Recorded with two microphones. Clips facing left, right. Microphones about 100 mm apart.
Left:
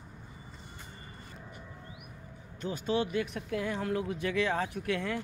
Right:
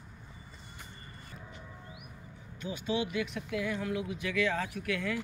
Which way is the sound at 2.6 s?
45° left (ahead or behind).